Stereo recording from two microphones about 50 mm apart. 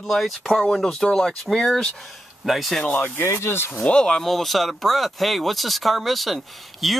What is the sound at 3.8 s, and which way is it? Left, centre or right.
Speech, centre.